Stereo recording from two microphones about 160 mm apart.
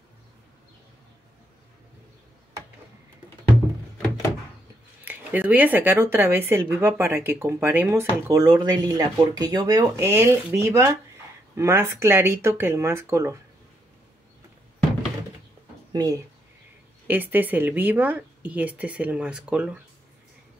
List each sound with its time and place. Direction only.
5.0 s speech: 10° right (ahead or behind)
8.3 s speech: 25° right (ahead or behind)
15.9 s speech: 20° right (ahead or behind)
17.1 s speech: 10° right (ahead or behind)